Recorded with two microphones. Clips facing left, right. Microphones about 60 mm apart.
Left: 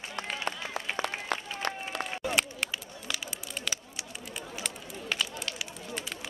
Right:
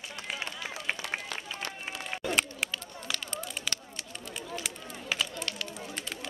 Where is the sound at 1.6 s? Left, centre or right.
Left.